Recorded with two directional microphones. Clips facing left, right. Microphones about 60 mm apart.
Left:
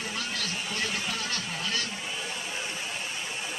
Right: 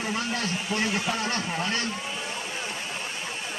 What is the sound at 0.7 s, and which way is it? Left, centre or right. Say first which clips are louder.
Speech: right 6 dB; right.